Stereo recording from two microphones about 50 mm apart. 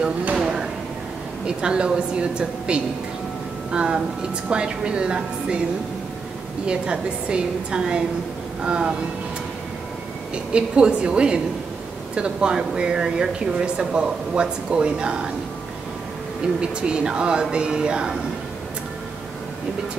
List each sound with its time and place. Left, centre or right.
0.3 s a sound: centre
1.4 s speech: centre
6.6 s speech: centre
10.3 s speech: right
16.8 s speech: centre